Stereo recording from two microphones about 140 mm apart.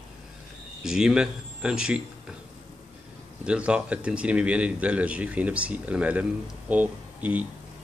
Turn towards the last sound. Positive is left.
turn(degrees=-10)  # may be behind; listen again after turning